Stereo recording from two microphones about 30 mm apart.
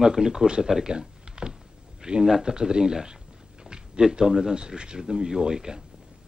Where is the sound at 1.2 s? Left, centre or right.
Right.